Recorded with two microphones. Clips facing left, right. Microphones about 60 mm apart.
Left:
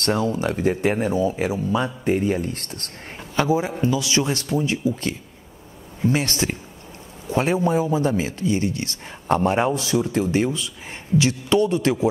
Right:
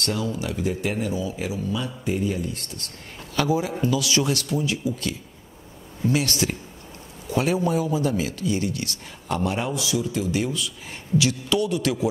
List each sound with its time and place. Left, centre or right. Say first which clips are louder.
0.0 s speech: left 5 dB; left
3.3 s speech: left 2 dB; left